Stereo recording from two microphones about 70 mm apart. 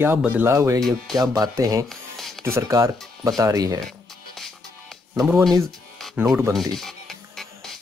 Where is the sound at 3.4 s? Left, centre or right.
Right.